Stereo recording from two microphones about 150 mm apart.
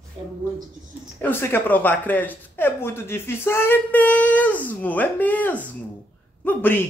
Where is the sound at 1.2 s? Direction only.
15° left (ahead or behind).